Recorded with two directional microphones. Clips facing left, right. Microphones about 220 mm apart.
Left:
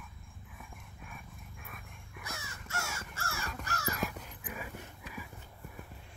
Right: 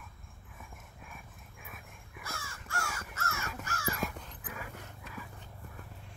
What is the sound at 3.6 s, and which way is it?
Crow, 40° left (ahead or behind).